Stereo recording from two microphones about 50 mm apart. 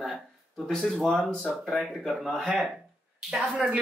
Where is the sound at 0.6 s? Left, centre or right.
Centre.